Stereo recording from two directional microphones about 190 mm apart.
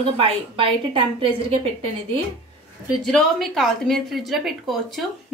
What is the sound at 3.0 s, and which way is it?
A woman's voice, centre (ahead or behind).